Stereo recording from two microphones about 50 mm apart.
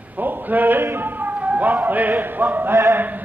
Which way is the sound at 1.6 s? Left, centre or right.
Right.